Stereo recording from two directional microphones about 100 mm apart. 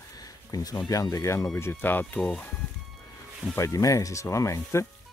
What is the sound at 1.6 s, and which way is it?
Speech, 20° left (ahead or behind).